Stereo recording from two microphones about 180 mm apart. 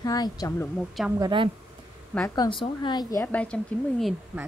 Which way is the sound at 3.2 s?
5° left (ahead or behind).